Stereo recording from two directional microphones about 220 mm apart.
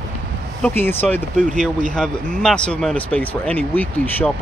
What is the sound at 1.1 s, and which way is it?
Speech, 35° right (ahead or behind).